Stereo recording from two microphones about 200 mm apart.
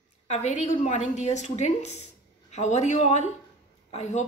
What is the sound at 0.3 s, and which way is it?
A woman's voice, 35° left (ahead or behind).